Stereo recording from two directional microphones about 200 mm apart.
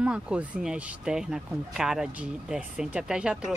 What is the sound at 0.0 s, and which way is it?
Speech, 5° right (ahead or behind).